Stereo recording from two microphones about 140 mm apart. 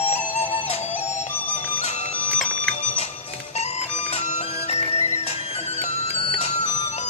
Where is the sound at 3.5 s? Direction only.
50° left (ahead or behind).